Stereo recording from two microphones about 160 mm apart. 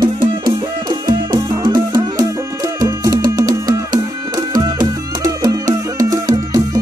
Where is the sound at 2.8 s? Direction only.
20° right (ahead or behind).